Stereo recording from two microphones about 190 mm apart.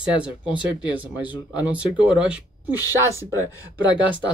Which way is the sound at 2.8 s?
15° left (ahead or behind).